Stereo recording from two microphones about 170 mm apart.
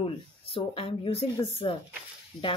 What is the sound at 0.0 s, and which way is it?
Speech, 35° left (ahead or behind).